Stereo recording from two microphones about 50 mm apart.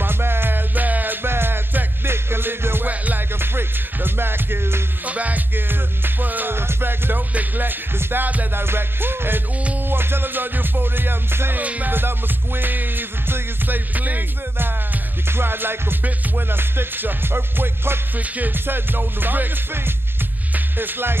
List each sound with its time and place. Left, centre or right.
0.0 s music: right
1.2 s music: right
5.0 s music: right
5.7 s music: right
6.5 s music: right
15.2 s music: right
18.3 s music: right